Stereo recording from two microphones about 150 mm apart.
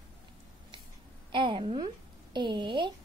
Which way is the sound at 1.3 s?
35° right (ahead or behind).